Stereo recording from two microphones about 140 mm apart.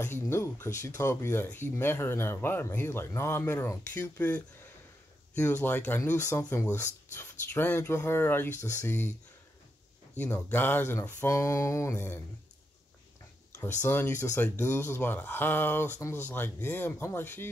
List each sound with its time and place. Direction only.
0.0 s speech: 20° left (ahead or behind)
10.1 s speech: 15° left (ahead or behind)
13.7 s speech: 15° left (ahead or behind)